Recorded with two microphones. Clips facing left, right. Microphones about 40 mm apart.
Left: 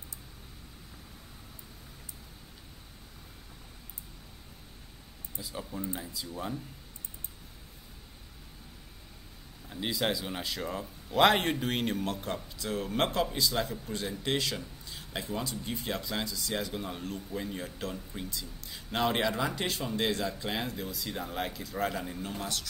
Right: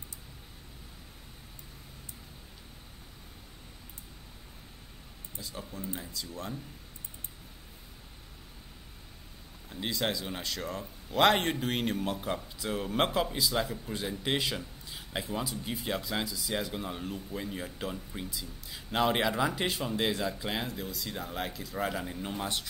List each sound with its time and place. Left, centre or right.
5.4 s speech: centre
9.7 s speech: centre
22.2 s speech: right